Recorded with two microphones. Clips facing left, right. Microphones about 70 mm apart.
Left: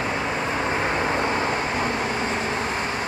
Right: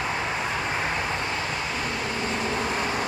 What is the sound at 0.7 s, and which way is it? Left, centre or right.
Vehicle, left.